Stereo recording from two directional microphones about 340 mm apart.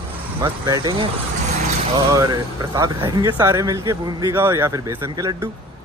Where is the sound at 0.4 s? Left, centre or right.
Centre.